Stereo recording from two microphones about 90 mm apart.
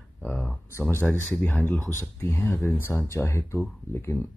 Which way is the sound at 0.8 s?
20° left (ahead or behind).